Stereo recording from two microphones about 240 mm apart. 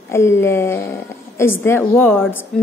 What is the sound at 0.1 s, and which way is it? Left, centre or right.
A woman's voice, centre.